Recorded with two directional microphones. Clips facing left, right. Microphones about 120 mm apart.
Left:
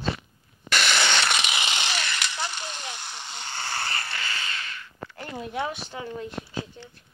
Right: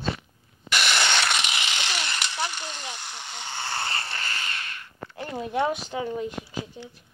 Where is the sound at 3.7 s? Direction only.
25° right (ahead or behind).